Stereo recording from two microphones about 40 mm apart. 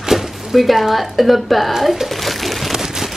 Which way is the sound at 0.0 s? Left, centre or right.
Centre.